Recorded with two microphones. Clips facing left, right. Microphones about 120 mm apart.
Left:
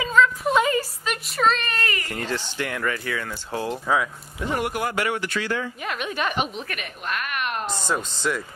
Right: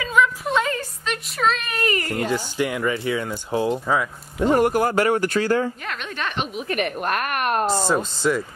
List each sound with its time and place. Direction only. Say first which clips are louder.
0.2 s a sound: even; 10° right (ahead or behind)
0.5 s a sound: left 2 dB; 5° left (ahead or behind)
2.1 s speech: right 5 dB; 10° right (ahead or behind)
3.7 s a woman's voice: right 1 dB; centre (ahead or behind)
4.4 s speech: right 8 dB; 40° right (ahead or behind)
5.9 s a woman's voice: left 2 dB; 5° left (ahead or behind)
6.8 s a woman's voice: right 9 dB; 50° right (ahead or behind)
8.2 s a woman's voice: right 5 dB; centre (ahead or behind)